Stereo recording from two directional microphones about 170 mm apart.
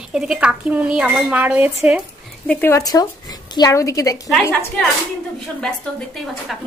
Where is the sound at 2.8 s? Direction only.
20° left (ahead or behind).